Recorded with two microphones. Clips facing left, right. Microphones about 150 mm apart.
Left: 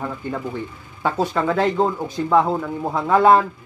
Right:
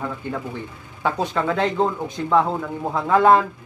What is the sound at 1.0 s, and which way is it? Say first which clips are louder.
Speech: left 2 dB; 5° left (ahead or behind).